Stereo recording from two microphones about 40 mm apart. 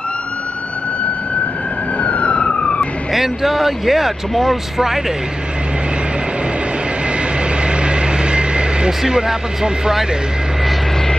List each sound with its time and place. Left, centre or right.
2.0 s emergency vehicle: left
3.1 s speech: centre
7.6 s vehicle: right
9.0 s speech: centre